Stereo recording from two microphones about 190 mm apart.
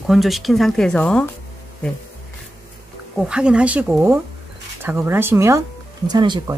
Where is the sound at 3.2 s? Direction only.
5° right (ahead or behind).